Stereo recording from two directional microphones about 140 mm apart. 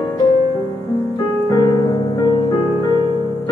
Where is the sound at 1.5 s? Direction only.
30° left (ahead or behind).